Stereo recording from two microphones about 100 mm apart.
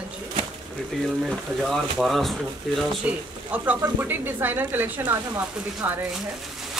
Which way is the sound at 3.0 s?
15° right (ahead or behind).